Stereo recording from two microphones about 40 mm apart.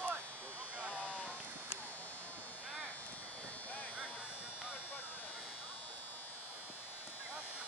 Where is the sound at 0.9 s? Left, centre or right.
Left.